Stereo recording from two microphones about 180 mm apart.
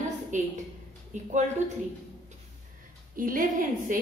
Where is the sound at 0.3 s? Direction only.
45° right (ahead or behind).